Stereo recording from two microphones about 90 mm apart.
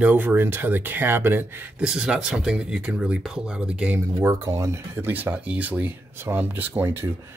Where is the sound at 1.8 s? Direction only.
10° right (ahead or behind).